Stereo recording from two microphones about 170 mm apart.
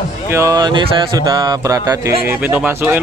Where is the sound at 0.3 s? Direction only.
20° right (ahead or behind).